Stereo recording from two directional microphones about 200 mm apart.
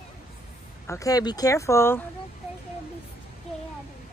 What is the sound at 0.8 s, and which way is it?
Speech, 15° left (ahead or behind).